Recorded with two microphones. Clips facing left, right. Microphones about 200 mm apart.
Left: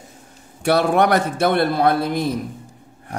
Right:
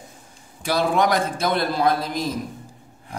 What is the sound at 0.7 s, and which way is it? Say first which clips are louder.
A man's voice: left 4 dB; 60° left (ahead or behind).